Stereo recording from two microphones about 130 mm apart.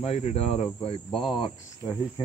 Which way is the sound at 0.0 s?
50° left (ahead or behind).